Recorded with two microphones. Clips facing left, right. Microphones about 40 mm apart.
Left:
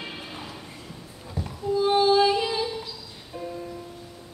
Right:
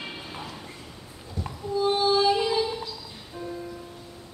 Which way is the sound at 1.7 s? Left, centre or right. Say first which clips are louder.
Left 3 dB; centre.